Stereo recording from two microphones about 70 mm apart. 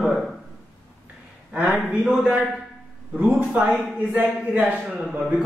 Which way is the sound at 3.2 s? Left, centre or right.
Right.